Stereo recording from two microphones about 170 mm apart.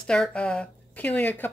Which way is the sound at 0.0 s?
5° left (ahead or behind).